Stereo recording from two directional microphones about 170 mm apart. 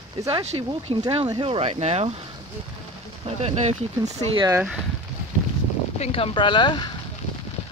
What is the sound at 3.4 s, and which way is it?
Speech, 40° right (ahead or behind).